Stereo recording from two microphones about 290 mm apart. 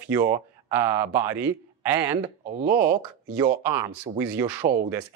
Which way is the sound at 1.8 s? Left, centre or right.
Centre.